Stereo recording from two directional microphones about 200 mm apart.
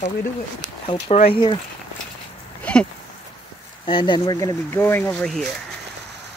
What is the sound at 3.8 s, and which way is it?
Speech, 25° left (ahead or behind).